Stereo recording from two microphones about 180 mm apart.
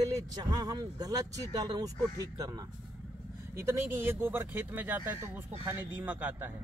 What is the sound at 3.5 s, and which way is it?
Speech, 15° right (ahead or behind).